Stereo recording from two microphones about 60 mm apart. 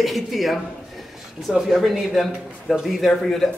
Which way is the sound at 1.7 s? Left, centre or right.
Centre.